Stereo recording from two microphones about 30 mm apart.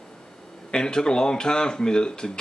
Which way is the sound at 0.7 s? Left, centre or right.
Left.